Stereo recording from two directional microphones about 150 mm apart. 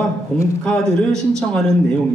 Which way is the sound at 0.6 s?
5° left (ahead or behind).